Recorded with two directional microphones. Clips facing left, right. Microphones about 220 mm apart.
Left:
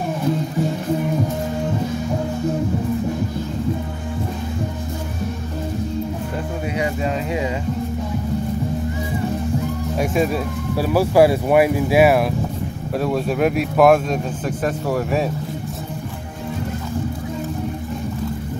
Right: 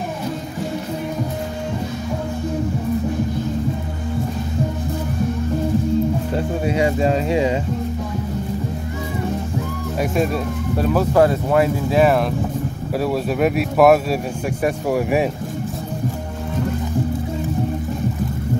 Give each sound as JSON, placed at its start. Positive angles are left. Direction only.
{"t": 6.6, "sound": "speech", "side_deg": -30}
{"t": 9.9, "sound": "speech", "side_deg": 0}
{"t": 13.0, "sound": "speech", "side_deg": 0}